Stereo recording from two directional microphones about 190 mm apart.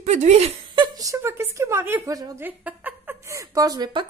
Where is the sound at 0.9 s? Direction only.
15° right (ahead or behind).